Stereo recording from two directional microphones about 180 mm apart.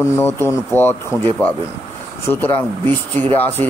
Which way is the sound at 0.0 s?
15° left (ahead or behind).